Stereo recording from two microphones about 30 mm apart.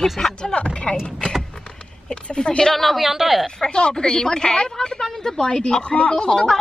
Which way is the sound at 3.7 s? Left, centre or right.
Left.